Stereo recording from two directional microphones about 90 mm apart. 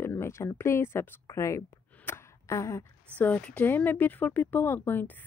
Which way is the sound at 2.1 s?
30° left (ahead or behind).